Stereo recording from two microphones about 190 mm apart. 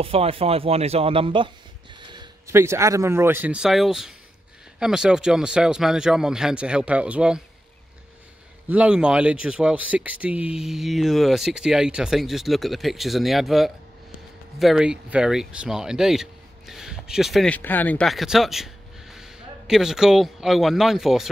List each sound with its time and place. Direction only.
0.0 s speech: 30° right (ahead or behind); by 7.4 s 5° right (ahead or behind)
8.6 s speech: 5° right (ahead or behind)